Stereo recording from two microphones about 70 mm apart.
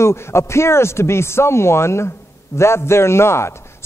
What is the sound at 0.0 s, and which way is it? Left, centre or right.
A man's voice, left.